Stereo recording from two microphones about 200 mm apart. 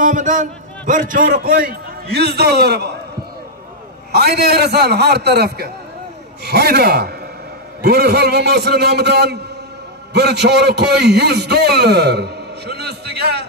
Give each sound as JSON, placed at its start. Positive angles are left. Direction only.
{"t": 0.0, "sound": "a man's voice", "side_deg": -40}
{"t": 4.1, "sound": "a man's voice", "side_deg": -55}